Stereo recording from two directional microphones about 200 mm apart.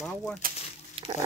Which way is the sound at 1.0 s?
25° right (ahead or behind).